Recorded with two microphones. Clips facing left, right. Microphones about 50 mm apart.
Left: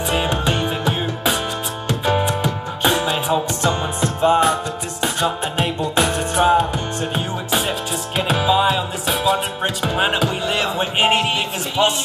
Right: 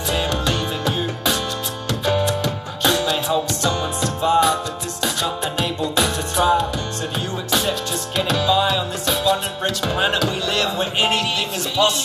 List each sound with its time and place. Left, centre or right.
0.1 s music: left
7.2 s music: left
11.8 s a sound: left